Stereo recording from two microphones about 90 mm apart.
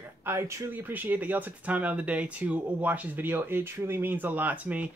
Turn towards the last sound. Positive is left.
turn(degrees=-15)  # may be behind; listen again after turning